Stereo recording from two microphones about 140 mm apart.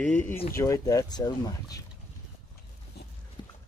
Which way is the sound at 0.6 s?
25° left (ahead or behind).